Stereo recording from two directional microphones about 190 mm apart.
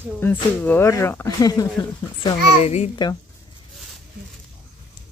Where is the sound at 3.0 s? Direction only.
25° left (ahead or behind).